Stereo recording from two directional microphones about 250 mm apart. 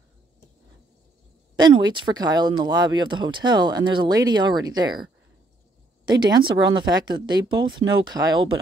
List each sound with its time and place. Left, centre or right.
1.6 s speech: centre